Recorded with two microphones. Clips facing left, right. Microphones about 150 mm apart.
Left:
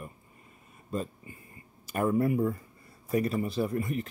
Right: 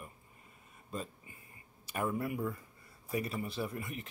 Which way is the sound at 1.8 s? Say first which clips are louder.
Left 9 dB; 45° left (ahead or behind).